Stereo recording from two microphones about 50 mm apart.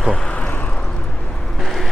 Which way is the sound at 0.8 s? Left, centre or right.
Centre.